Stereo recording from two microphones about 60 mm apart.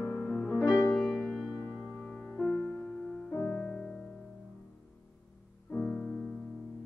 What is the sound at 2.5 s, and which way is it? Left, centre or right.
Music, centre.